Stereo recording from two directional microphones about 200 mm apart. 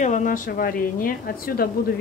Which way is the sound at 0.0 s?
40° left (ahead or behind).